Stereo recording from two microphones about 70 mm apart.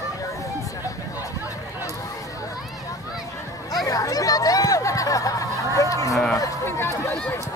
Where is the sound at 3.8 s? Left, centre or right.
Left.